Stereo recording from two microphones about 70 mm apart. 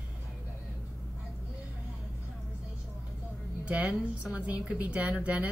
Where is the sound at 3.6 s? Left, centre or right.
Centre.